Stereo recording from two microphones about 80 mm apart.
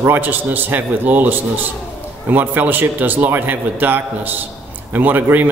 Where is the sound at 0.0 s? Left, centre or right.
Right.